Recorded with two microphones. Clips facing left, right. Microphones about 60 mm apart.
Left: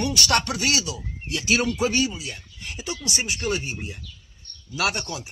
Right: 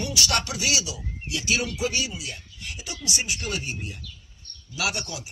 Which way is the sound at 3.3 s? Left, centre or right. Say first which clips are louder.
Left 4 dB; left.